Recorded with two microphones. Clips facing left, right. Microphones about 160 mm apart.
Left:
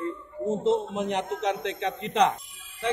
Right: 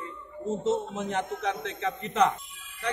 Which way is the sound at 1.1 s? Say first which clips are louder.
Left 2 dB; 20° left (ahead or behind).